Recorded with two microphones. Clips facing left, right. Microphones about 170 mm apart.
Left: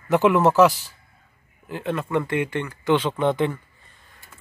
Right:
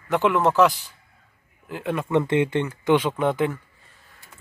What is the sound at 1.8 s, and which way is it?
Speech, 15° right (ahead or behind).